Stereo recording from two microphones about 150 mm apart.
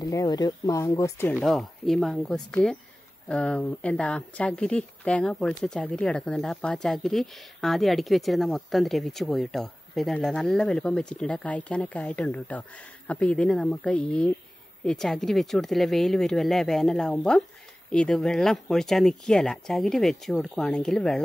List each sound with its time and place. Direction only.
0.0 s speech: 25° left (ahead or behind)
1.4 s speech: centre (ahead or behind)